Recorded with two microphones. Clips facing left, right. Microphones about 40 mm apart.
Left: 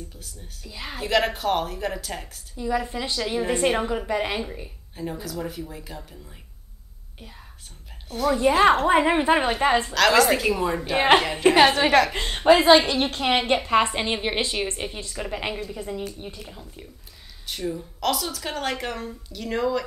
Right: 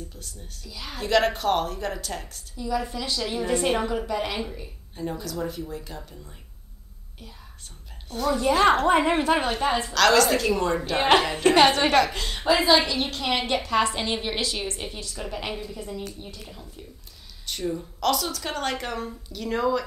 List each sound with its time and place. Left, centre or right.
0.7 s a woman's voice: left
0.9 s a woman's voice: centre
2.5 s a woman's voice: left
5.2 s a woman's voice: centre
8.1 s a woman's voice: centre
8.4 s a woman's voice: centre
9.7 s a woman's voice: left
9.9 s a woman's voice: centre
12.1 s a woman's voice: left
17.5 s a woman's voice: centre